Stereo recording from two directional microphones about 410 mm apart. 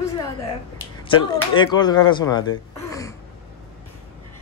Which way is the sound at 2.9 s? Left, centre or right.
Centre.